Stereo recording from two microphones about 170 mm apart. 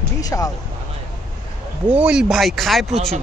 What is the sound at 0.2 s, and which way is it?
Speech, 20° left (ahead or behind).